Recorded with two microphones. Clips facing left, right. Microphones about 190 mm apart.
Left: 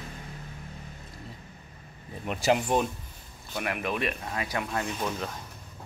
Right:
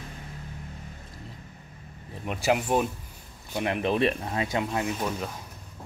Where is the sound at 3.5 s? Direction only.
25° right (ahead or behind).